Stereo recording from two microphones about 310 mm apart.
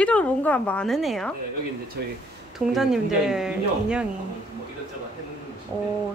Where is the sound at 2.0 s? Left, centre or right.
Right.